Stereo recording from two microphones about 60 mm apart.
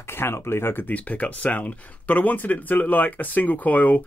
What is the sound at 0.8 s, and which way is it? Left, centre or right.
Speech, left.